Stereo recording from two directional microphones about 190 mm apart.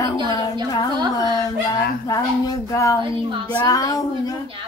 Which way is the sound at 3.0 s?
25° right (ahead or behind).